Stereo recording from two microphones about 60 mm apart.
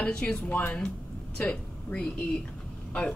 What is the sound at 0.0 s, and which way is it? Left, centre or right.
Speech, centre.